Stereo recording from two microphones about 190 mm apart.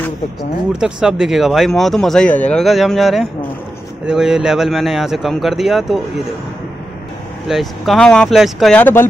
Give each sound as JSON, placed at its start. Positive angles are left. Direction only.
{"t": 0.4, "sound": "speech", "side_deg": -5}
{"t": 7.4, "sound": "speech", "side_deg": 0}